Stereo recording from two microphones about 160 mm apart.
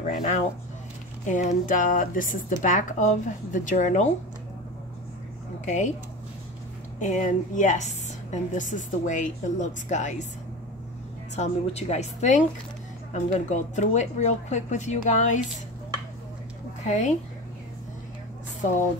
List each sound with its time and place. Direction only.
0.0 s a woman's voice: 50° left (ahead or behind)
7.0 s a woman's voice: 50° left (ahead or behind)
11.3 s a woman's voice: 45° left (ahead or behind)
16.8 s a woman's voice: 50° left (ahead or behind)